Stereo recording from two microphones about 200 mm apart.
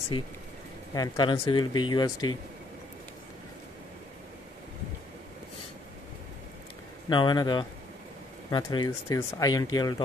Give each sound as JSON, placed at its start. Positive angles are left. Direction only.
{"t": 0.9, "sound": "speech", "side_deg": 20}
{"t": 7.1, "sound": "speech", "side_deg": 20}